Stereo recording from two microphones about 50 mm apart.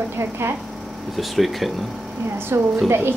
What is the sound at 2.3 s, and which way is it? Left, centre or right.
Speech, right.